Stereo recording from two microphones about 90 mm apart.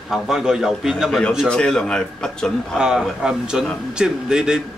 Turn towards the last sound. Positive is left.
turn(degrees=-10)  # may be behind; listen again after turning